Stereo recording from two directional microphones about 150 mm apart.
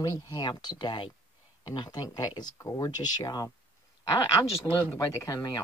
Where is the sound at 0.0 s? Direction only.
25° left (ahead or behind).